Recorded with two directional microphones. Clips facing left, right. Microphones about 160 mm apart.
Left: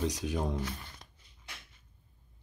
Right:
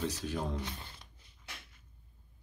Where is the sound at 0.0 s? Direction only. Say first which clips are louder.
Left 3 dB; 15° left (ahead or behind).